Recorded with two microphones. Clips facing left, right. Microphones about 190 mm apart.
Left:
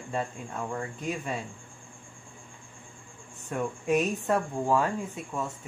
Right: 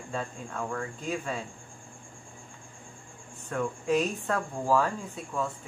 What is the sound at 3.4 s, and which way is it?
Speech, 5° left (ahead or behind).